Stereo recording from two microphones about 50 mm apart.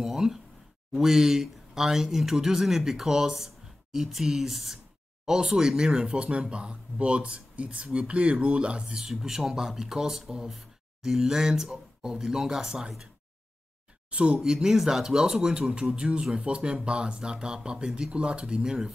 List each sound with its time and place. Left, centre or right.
0.0 s a sound: centre
0.9 s speech: centre
8.9 s speech: centre
14.1 s speech: right